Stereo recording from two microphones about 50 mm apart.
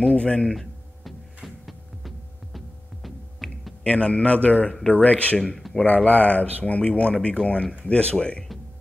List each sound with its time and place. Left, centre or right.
0.0 s a man's voice: left
0.6 s a sound: centre
3.8 s a man's voice: left